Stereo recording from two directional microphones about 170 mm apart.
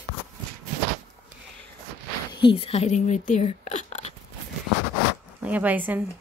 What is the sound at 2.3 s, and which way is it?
Speech, 30° left (ahead or behind).